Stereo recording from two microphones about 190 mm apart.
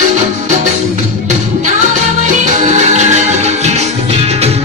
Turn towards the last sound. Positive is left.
turn(degrees=-35)  # may be behind; listen again after turning